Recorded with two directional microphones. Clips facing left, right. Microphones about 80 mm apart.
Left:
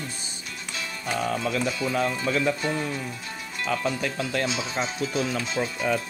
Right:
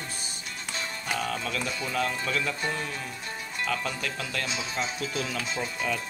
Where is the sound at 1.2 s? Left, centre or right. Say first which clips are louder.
Left 5 dB; left.